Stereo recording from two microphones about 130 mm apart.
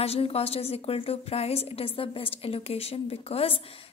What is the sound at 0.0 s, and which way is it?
A woman's voice, 50° left (ahead or behind).